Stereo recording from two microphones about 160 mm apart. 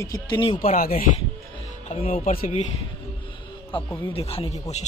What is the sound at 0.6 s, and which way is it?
Speech, 60° left (ahead or behind).